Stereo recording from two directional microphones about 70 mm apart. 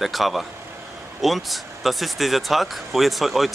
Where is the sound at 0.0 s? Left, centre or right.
Centre.